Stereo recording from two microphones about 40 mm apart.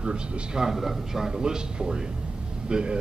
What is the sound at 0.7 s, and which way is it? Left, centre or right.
A man's voice, centre.